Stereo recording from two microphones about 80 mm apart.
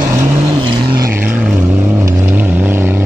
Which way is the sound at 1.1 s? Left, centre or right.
Right.